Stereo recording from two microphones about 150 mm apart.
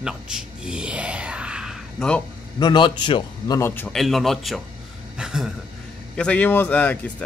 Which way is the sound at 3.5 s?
15° left (ahead or behind).